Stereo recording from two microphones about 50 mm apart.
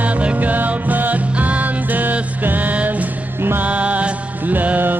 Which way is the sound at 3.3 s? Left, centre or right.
Right.